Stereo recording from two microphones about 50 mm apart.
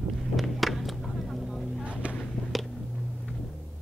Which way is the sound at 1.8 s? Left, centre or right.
Right.